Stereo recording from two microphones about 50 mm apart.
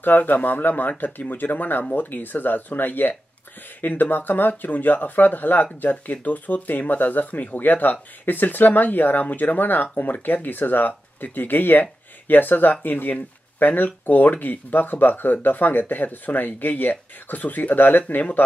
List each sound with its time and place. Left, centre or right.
0.0 s speech: left